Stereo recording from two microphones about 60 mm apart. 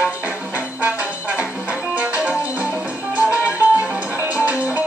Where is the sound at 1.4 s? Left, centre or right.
Right.